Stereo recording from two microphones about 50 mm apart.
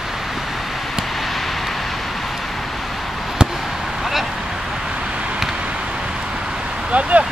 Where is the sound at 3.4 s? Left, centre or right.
Centre.